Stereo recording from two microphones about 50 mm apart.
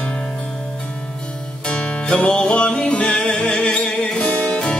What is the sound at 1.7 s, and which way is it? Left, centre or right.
Music, centre.